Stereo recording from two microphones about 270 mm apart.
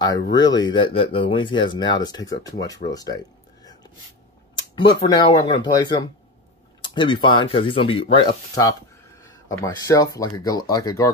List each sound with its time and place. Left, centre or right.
0.3 s speech: centre
4.7 s speech: centre